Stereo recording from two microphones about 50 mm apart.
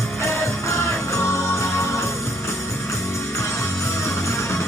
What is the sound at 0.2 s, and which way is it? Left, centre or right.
Music, left.